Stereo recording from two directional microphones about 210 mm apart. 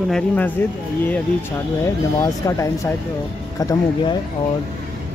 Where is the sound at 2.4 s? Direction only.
15° left (ahead or behind).